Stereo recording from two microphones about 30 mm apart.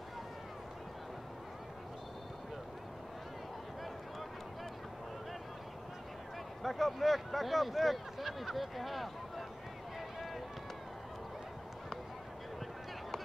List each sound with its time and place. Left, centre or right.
6.6 s speech: centre